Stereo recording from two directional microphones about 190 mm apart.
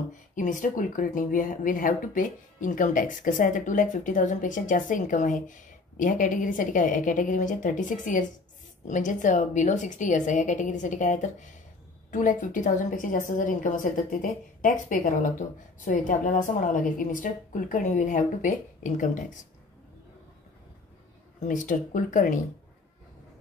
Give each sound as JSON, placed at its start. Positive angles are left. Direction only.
{"t": 0.4, "sound": "a woman's voice", "side_deg": 45}
{"t": 21.4, "sound": "a woman's voice", "side_deg": 40}